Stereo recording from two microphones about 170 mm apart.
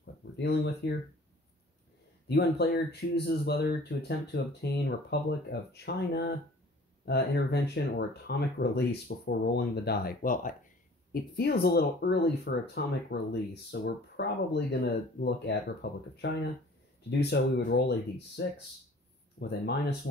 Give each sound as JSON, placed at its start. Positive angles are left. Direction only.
{"t": 0.0, "sound": "a sound", "side_deg": 75}
{"t": 2.2, "sound": "speech", "side_deg": 75}
{"t": 11.3, "sound": "speech", "side_deg": 65}
{"t": 19.4, "sound": "speech", "side_deg": 75}